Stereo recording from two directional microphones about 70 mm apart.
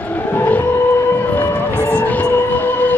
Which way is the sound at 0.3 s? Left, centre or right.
Left.